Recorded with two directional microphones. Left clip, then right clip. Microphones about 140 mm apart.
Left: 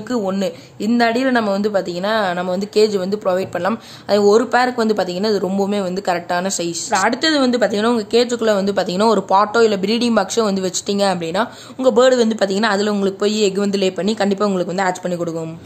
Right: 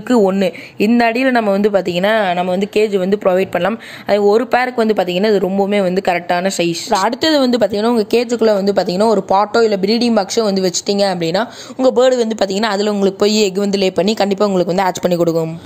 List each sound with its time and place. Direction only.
0.1 s speech: 20° right (ahead or behind)
1.6 s speech: 40° right (ahead or behind)
2.0 s speech: 30° right (ahead or behind)
2.2 s speech: centre (ahead or behind)
2.6 s speech: 15° right (ahead or behind)
7.1 s speech: 40° right (ahead or behind)
8.3 s speech: 20° right (ahead or behind)
9.3 s speech: 25° right (ahead or behind)
11.1 s speech: 25° right (ahead or behind)